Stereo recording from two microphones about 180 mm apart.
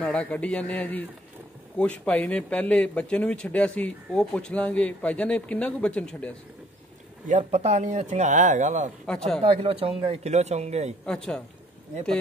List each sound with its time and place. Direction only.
0.0 s speech: 5° left (ahead or behind)
7.2 s speech: 40° right (ahead or behind)
11.1 s speech: 5° left (ahead or behind)